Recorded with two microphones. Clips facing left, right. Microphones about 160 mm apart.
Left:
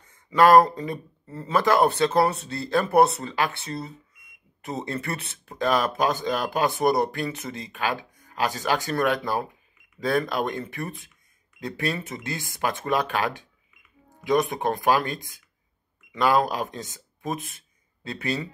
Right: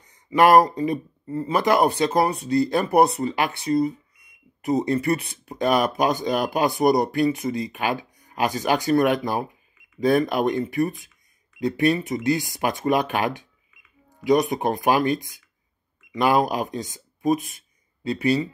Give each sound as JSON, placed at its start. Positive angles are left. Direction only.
{"t": 0.0, "sound": "speech", "side_deg": -15}
{"t": 16.2, "sound": "speech", "side_deg": -15}
{"t": 16.9, "sound": "a sound", "side_deg": -15}
{"t": 18.1, "sound": "speech", "side_deg": -10}